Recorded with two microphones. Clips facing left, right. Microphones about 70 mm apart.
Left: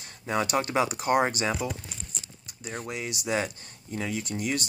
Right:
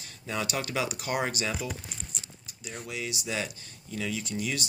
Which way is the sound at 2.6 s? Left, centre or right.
Left.